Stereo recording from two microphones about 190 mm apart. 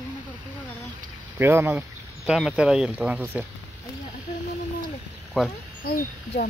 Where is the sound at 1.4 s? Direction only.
10° right (ahead or behind).